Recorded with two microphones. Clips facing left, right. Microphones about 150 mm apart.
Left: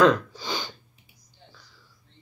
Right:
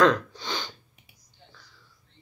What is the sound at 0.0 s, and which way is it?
Sniff, 5° left (ahead or behind).